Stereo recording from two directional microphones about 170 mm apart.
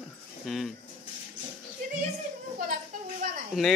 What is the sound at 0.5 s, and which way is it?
Speech, centre (ahead or behind).